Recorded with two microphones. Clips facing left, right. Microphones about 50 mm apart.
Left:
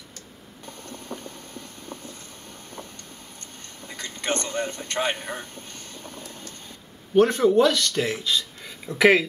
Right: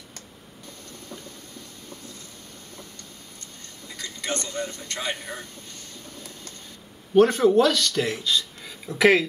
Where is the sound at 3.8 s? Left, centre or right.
Left.